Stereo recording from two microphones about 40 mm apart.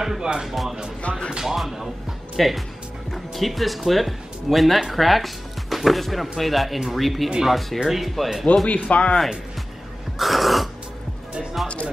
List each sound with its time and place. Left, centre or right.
0.2 s speech: centre
0.5 s speech: centre
8.6 s speech: left
10.1 s throat clearing: centre
11.6 s music: left